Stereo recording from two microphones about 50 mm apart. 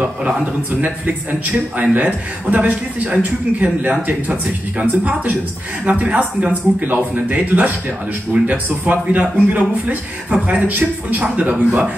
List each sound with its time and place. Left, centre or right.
0.7 s a man's voice: right